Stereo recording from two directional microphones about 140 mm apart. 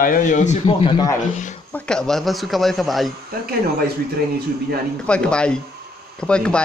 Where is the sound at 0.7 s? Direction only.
35° left (ahead or behind).